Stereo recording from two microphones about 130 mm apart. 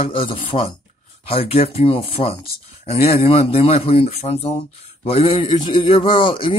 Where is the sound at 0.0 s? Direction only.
45° left (ahead or behind).